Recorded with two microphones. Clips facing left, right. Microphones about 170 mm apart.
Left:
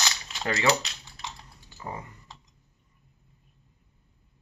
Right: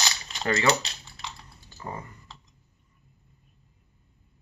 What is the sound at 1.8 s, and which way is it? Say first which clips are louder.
Speech: even; 15° left (ahead or behind).